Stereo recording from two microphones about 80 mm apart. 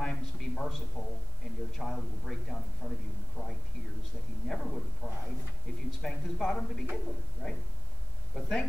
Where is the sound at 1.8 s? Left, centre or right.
Centre.